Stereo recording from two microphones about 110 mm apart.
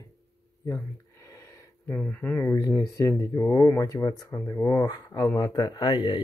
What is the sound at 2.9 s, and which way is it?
Speech, 30° left (ahead or behind).